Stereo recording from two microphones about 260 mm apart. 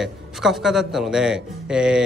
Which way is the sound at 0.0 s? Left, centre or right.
Centre.